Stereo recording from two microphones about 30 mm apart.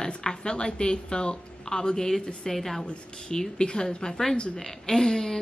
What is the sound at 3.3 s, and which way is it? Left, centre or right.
Speech, left.